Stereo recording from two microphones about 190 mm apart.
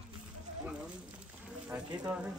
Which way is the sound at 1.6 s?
5° right (ahead or behind).